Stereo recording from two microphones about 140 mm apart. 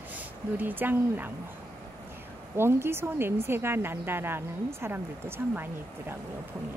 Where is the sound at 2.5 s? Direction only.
15° right (ahead or behind).